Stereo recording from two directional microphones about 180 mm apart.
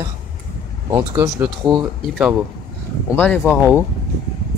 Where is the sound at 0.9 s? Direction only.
15° right (ahead or behind).